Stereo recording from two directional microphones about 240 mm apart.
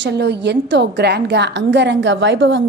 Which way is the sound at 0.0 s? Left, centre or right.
Right.